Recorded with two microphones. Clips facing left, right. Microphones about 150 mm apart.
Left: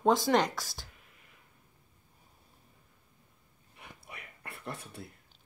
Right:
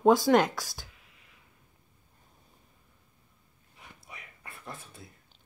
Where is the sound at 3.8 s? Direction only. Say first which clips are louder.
Left 1 dB; 65° left (ahead or behind).